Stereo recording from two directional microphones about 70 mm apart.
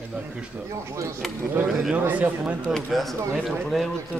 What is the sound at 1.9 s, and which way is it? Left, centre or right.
Speech, right.